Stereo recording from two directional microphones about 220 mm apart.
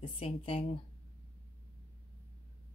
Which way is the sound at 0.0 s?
25° left (ahead or behind).